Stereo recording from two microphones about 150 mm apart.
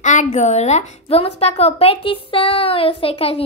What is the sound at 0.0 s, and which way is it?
A woman's voice, 55° left (ahead or behind).